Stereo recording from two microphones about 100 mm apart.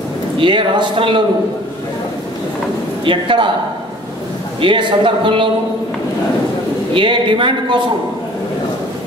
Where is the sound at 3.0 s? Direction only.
55° right (ahead or behind).